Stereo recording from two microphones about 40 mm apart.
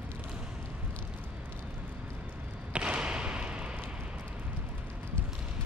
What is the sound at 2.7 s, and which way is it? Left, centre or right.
Basketball bounce, right.